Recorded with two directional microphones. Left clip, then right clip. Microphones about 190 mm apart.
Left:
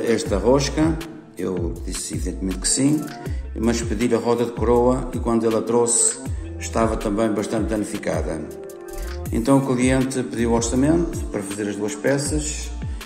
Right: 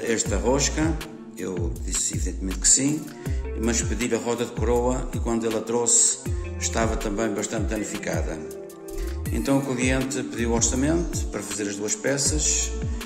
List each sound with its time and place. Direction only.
0.0 s speech: centre (ahead or behind)